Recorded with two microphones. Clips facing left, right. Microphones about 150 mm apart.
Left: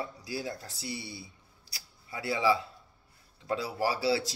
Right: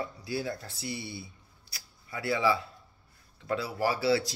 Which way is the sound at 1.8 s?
30° left (ahead or behind).